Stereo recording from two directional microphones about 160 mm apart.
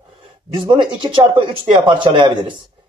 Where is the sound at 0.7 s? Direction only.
30° right (ahead or behind).